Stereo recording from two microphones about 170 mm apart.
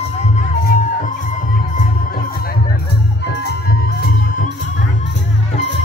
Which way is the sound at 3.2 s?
65° left (ahead or behind).